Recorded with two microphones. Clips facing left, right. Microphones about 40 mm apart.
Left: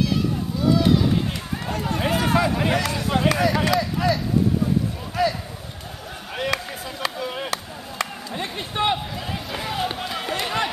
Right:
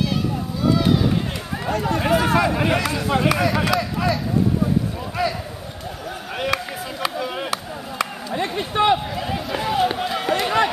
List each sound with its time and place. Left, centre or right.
0.7 s run: centre
1.7 s speech: centre
6.3 s a sound: centre